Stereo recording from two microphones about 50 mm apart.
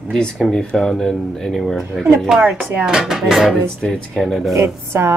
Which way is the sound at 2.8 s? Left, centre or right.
Centre.